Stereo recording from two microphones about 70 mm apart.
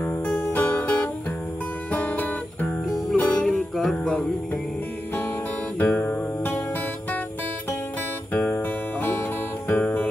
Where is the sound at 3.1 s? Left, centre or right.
Left.